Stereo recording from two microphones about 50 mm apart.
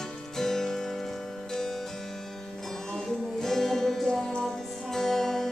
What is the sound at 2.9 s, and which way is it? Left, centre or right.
Music, centre.